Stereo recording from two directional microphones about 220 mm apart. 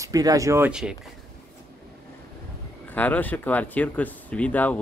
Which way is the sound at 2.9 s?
5° left (ahead or behind).